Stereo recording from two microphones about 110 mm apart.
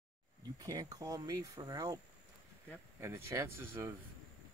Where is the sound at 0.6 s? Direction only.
35° right (ahead or behind).